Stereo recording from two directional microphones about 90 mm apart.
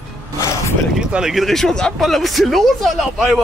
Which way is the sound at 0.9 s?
5° right (ahead or behind).